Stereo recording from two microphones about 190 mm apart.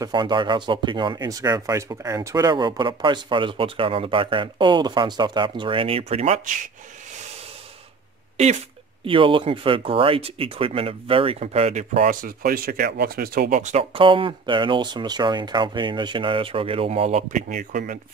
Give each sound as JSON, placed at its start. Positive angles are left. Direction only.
{"t": 0.0, "sound": "speech", "side_deg": -25}
{"t": 9.0, "sound": "speech", "side_deg": -25}